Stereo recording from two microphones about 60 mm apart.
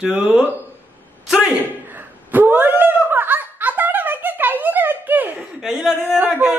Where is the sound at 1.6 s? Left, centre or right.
Right.